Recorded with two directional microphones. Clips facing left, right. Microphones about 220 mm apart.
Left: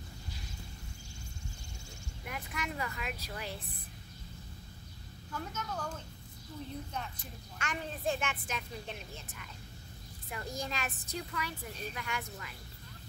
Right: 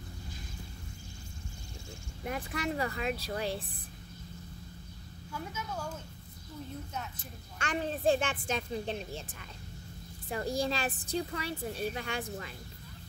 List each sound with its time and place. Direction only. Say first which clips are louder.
2.2 s a woman's voice: right 7 dB; 30° right (ahead or behind)
5.3 s a woman's voice: even; 10° right (ahead or behind)
7.5 s a woman's voice: right 6 dB; 30° right (ahead or behind)